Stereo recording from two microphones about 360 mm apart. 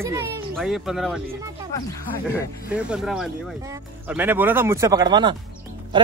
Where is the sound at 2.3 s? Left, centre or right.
Centre.